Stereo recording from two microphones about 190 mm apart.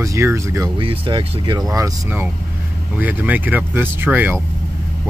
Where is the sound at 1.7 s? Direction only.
15° right (ahead or behind).